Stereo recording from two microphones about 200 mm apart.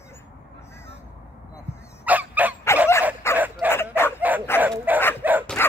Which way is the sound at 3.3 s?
15° left (ahead or behind).